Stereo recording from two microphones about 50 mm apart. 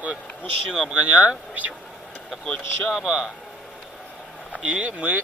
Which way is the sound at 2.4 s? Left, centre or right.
Centre.